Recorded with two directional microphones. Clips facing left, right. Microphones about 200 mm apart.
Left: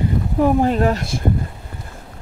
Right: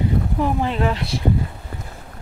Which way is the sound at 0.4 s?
50° left (ahead or behind).